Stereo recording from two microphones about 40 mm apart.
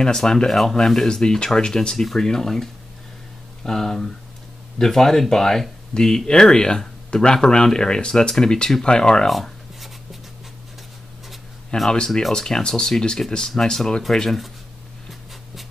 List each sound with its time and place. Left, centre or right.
0.0 s speech: centre
0.5 s speech: centre
9.3 s writing: centre
11.7 s speech: left
12.1 s speech: centre